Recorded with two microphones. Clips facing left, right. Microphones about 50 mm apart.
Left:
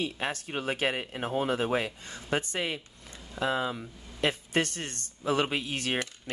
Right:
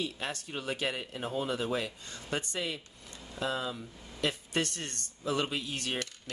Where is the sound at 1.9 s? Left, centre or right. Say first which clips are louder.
Left 5 dB; centre.